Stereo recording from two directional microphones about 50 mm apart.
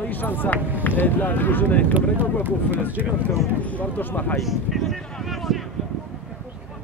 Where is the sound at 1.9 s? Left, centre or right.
Right.